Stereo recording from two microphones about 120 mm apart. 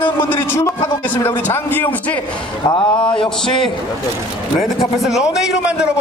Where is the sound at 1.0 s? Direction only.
15° left (ahead or behind).